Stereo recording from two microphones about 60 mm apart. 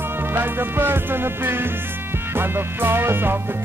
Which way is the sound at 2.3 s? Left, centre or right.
Right.